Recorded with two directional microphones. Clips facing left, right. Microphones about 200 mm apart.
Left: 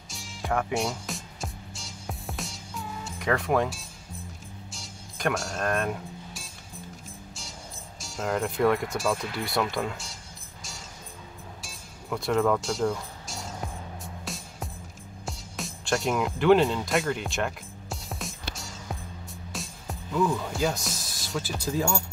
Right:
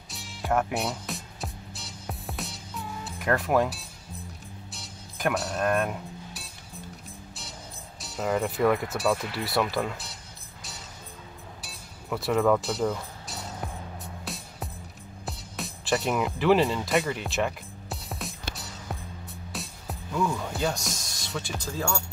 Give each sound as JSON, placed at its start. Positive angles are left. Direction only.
{"t": 0.1, "sound": "music", "side_deg": 0}
{"t": 8.0, "sound": "speech", "side_deg": 0}
{"t": 11.6, "sound": "music", "side_deg": 0}
{"t": 21.6, "sound": "speech", "side_deg": 15}